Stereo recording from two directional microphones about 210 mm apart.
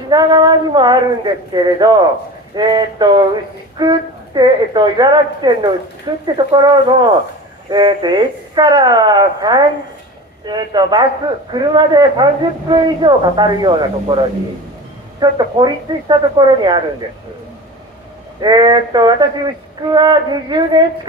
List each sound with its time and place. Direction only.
0.1 s a man's voice: 20° right (ahead or behind)
18.4 s a man's voice: 20° right (ahead or behind)